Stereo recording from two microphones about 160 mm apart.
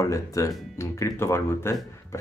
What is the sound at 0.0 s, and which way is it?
Speech, 20° left (ahead or behind).